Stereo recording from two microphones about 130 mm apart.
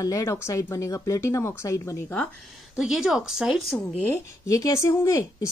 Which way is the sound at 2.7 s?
5° right (ahead or behind).